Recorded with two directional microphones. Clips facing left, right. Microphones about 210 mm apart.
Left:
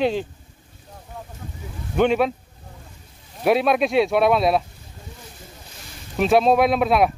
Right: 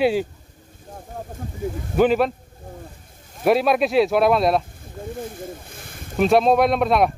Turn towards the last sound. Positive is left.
turn(degrees=0)  # may be behind; listen again after turning